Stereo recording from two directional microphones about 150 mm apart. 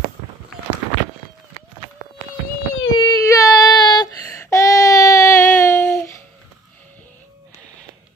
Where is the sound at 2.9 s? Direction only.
25° left (ahead or behind).